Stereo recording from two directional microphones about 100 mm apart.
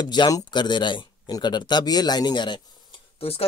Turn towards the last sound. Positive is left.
turn(degrees=50)  # may be behind; listen again after turning